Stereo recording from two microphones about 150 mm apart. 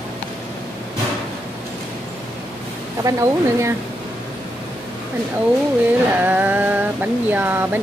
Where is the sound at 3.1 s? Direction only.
20° right (ahead or behind).